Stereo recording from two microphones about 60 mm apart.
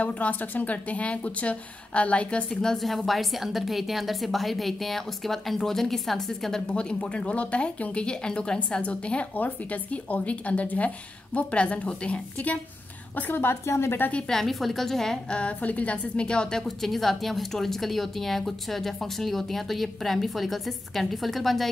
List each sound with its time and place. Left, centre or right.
0.0 s speech: left
2.6 s a woman's voice: centre
6.7 s speech: centre
13.1 s a woman's voice: left
14.3 s a woman's voice: centre
16.6 s a woman's voice: centre